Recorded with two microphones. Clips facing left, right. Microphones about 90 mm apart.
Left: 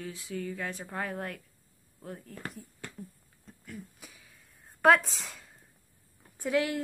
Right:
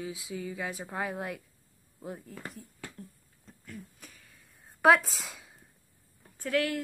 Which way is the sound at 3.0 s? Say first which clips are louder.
Left 2 dB; 5° left (ahead or behind).